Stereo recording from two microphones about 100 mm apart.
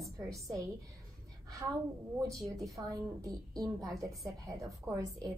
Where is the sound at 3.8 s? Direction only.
35° right (ahead or behind).